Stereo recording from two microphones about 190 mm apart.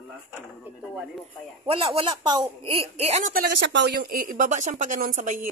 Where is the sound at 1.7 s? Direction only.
30° right (ahead or behind).